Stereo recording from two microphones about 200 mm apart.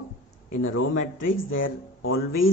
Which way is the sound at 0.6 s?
90° left.